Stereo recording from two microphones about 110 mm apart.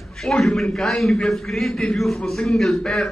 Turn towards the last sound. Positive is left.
turn(degrees=5)  # may be behind; listen again after turning